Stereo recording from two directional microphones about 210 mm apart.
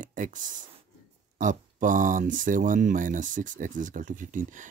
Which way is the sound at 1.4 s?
40° right (ahead or behind).